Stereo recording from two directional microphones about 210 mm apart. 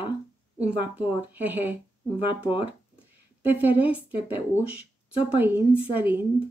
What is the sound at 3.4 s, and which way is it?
A woman's voice, 10° right (ahead or behind).